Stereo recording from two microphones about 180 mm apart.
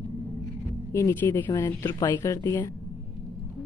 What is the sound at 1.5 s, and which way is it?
Speech, 20° left (ahead or behind).